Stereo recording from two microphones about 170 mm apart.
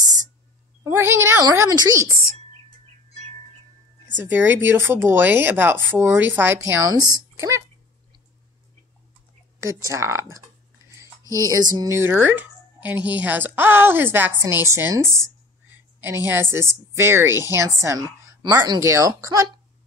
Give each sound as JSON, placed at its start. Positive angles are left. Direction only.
{"t": 0.8, "sound": "speech", "side_deg": -15}
{"t": 4.2, "sound": "speech", "side_deg": -10}
{"t": 9.8, "sound": "speech", "side_deg": -15}
{"t": 11.0, "sound": "a sound", "side_deg": -20}
{"t": 11.7, "sound": "speech", "side_deg": -20}
{"t": 16.5, "sound": "speech", "side_deg": -15}